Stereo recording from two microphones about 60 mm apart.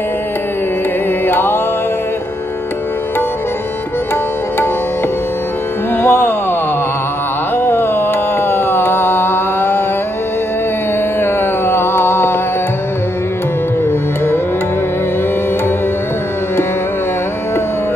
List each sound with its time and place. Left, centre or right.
1.2 s music: left
5.9 s music: left
7.5 s a sound: left
11.1 s carnatic music: left
13.8 s music: left